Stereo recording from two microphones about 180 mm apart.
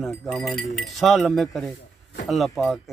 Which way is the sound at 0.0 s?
5° left (ahead or behind).